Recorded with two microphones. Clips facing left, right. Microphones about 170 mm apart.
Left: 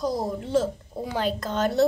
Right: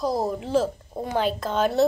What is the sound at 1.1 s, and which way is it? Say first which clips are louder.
Speech: right 3 dB; 60° right (ahead or behind).